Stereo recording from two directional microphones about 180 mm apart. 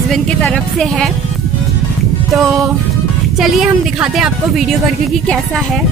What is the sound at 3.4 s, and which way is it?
Speech, 5° right (ahead or behind).